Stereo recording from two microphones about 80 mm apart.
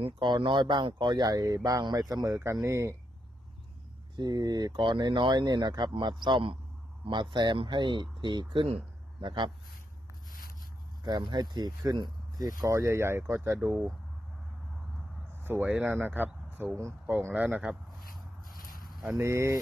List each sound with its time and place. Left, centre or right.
0.2 s speech: right
2.2 s speech: right
4.2 s speech: right
11.1 s speech: right
15.6 s speech: right
16.4 s a sound: right
16.7 s speech: right
17.1 s speech: right
19.0 s speech: right